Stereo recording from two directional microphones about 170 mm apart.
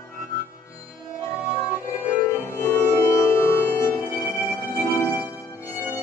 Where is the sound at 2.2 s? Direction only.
15° left (ahead or behind).